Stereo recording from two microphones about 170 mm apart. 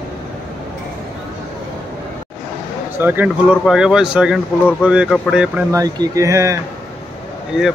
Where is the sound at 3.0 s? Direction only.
10° right (ahead or behind).